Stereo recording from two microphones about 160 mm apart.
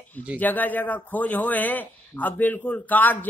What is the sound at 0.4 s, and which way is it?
A man's voice, 10° left (ahead or behind).